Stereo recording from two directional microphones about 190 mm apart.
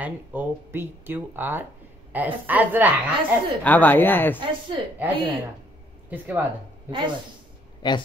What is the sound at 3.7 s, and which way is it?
Speech, 10° left (ahead or behind).